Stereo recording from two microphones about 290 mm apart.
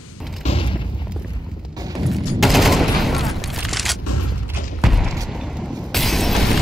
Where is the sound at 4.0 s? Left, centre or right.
Left.